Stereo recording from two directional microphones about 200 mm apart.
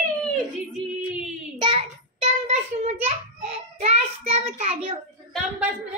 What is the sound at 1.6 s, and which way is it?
A child's voice, 30° right (ahead or behind).